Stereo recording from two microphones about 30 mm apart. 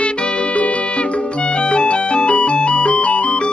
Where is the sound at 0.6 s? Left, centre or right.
Left.